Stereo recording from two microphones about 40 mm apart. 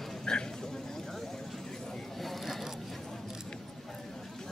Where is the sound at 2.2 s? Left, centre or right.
Centre.